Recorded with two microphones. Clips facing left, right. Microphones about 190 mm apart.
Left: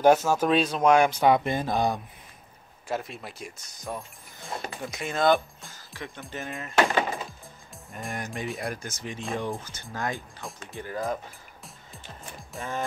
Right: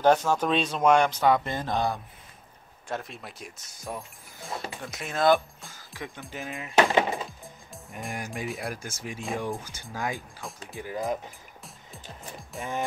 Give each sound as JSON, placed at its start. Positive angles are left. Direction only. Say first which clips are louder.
{"t": 0.0, "sound": "speech", "louder": "left 2 dB", "side_deg": 5}
{"t": 2.9, "sound": "speech", "louder": "left 3 dB", "side_deg": 5}
{"t": 5.9, "sound": "speech", "louder": "even", "side_deg": -15}
{"t": 6.2, "sound": "speech", "louder": "left 2 dB", "side_deg": 0}
{"t": 6.9, "sound": "wood", "louder": "right 2 dB", "side_deg": -20}
{"t": 8.0, "sound": "speech", "louder": "left 1 dB", "side_deg": 0}
{"t": 9.6, "sound": "speech", "louder": "even", "side_deg": -10}